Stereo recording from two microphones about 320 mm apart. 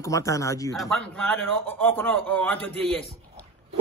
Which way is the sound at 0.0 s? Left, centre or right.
Centre.